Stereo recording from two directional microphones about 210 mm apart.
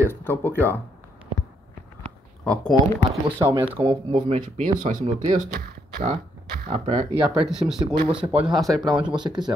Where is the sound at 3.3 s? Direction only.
10° right (ahead or behind).